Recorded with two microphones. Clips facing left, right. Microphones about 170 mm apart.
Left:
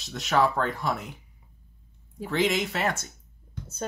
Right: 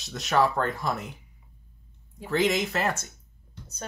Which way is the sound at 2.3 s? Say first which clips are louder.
Right 1 dB; centre (ahead or behind).